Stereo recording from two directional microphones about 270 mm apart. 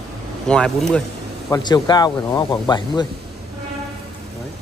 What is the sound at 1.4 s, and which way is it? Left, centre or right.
Speech, centre.